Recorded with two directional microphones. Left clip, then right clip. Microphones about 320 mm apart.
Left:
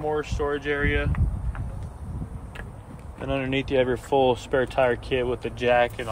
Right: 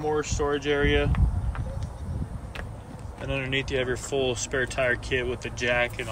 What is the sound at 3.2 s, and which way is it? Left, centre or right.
Speech, centre.